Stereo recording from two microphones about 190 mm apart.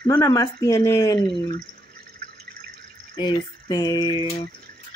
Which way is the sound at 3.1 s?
25° left (ahead or behind).